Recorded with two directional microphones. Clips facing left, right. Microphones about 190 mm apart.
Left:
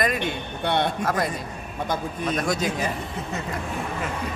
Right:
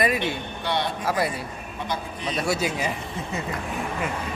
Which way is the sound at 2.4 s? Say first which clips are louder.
Right 2 dB; 10° right (ahead or behind).